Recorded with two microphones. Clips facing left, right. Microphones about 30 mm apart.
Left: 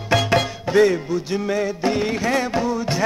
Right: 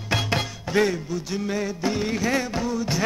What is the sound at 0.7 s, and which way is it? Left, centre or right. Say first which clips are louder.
Music: left 6 dB; centre.